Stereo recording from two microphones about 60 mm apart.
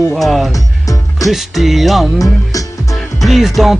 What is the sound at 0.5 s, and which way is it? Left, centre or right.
Music, left.